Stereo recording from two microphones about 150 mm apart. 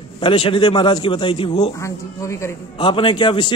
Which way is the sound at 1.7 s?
20° left (ahead or behind).